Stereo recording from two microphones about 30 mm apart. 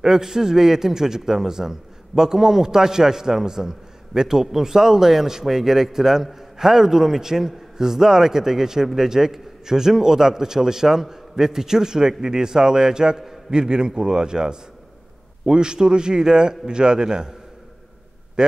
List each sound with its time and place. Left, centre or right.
0.0 s a man's voice: centre